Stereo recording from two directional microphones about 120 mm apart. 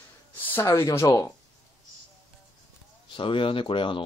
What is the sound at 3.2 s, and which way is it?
Speech, 45° left (ahead or behind).